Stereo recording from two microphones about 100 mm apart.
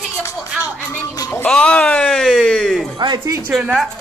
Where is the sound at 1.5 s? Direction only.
10° left (ahead or behind).